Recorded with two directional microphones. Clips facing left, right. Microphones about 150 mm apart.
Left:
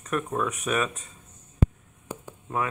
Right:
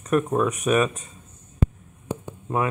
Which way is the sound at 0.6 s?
20° right (ahead or behind).